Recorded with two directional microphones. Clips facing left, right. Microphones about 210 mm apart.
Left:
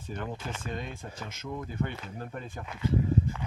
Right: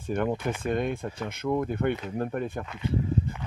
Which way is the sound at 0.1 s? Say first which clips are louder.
Right 10 dB; 60° right (ahead or behind).